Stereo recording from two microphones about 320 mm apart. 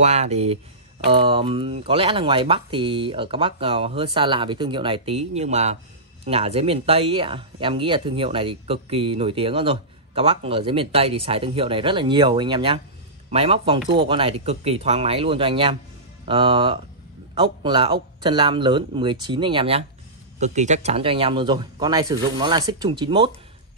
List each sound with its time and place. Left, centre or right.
0.0 s speech: right